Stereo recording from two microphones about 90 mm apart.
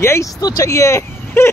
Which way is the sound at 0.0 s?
30° left (ahead or behind).